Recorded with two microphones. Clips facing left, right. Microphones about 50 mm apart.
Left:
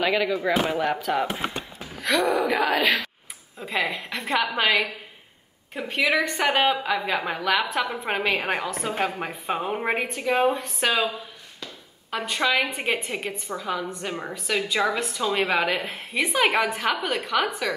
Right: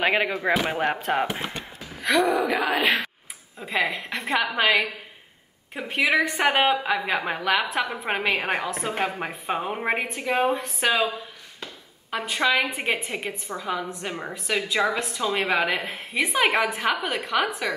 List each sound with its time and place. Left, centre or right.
0.0 s speech: right
0.7 s speech: right
2.0 s a woman's voice: centre
2.8 s speech: right
3.5 s a woman's voice: centre